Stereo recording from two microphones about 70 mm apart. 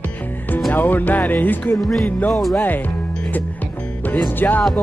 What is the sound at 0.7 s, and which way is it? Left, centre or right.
Speech, left.